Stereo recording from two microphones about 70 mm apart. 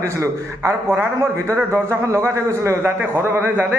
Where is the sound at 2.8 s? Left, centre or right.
Right.